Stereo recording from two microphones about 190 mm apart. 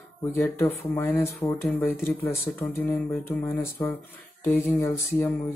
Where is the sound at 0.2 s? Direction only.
10° left (ahead or behind).